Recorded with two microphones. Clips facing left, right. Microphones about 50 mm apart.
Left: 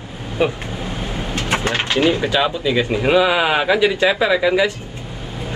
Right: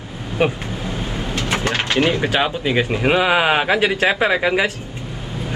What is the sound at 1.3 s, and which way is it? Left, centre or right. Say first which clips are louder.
Vehicle: left 1 dB; left.